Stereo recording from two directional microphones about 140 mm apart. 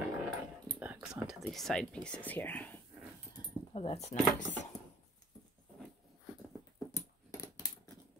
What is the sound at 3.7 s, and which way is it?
Speech, 45° left (ahead or behind).